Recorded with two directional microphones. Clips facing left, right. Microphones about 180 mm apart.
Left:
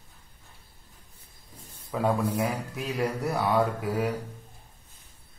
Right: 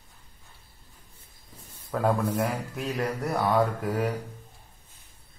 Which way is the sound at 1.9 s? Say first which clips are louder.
Right 1 dB; 5° left (ahead or behind).